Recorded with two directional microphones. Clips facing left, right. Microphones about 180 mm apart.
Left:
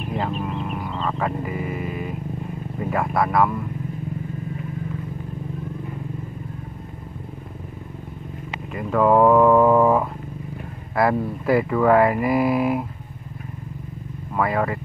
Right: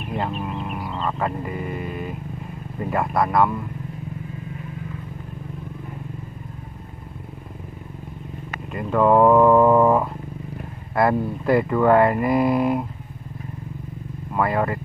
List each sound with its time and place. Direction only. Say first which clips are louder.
0.1 s a sound: even; centre (ahead or behind)
2.8 s speech: even; centre (ahead or behind)
8.7 s speech: even; centre (ahead or behind)
14.3 s speech: even; centre (ahead or behind)